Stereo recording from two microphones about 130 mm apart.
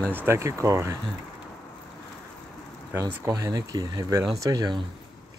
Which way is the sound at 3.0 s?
30° right (ahead or behind).